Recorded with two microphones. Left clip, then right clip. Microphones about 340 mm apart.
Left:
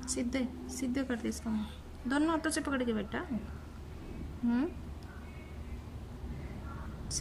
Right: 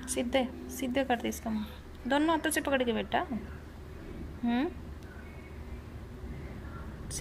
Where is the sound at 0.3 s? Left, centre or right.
Centre.